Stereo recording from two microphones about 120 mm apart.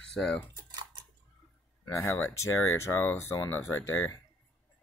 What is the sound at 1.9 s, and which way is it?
Speech, 20° left (ahead or behind).